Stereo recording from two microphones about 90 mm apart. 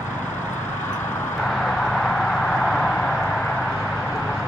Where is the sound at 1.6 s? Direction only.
5° left (ahead or behind).